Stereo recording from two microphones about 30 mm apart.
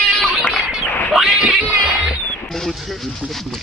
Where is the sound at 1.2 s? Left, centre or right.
Right.